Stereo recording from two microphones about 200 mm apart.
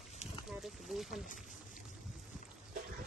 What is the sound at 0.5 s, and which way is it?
Boat, centre (ahead or behind).